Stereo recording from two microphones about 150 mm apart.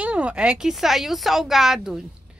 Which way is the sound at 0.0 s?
10° right (ahead or behind).